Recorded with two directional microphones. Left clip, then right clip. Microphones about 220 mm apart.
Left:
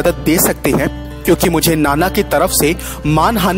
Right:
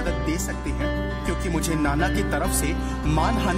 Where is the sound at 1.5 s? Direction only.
40° left (ahead or behind).